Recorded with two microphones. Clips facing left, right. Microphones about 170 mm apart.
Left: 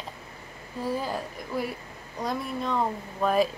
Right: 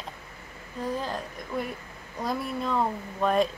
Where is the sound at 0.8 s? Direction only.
10° left (ahead or behind).